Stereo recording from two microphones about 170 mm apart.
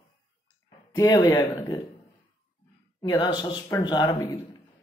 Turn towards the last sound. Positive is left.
turn(degrees=25)  # may be behind; listen again after turning